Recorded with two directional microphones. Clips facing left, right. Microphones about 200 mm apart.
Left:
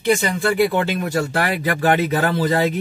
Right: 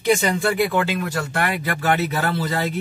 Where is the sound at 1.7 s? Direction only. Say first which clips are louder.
Left 6 dB; 45° left (ahead or behind).